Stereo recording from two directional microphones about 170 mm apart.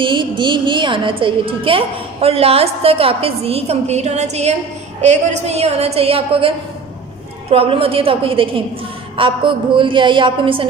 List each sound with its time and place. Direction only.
0.0 s a woman's voice: 30° right (ahead or behind)
7.5 s a woman's voice: 35° right (ahead or behind)